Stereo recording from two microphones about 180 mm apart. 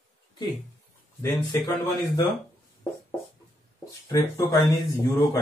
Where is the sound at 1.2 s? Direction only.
20° left (ahead or behind).